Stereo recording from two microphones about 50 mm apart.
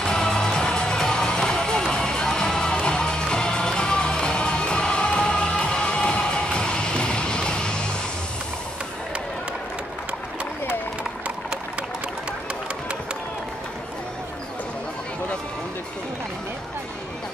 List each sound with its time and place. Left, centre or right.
0.0 s music: centre